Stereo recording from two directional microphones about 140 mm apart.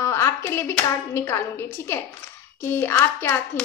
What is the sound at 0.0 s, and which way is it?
A woman's voice, 20° left (ahead or behind).